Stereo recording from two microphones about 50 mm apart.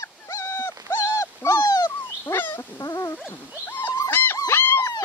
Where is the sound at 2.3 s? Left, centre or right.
Left.